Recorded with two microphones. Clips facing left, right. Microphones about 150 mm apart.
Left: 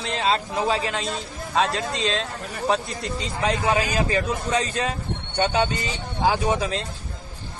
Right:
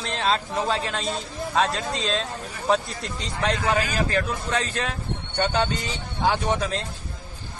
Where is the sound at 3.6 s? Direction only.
15° left (ahead or behind).